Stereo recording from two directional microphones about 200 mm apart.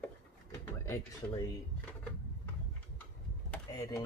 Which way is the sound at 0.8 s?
15° left (ahead or behind).